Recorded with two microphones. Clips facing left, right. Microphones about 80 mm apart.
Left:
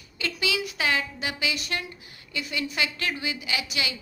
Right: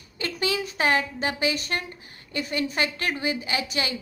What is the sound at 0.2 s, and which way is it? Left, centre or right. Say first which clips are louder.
A woman's voice: right 1 dB; right.